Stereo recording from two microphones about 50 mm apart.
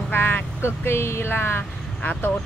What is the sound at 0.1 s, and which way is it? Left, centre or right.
Vehicle, left.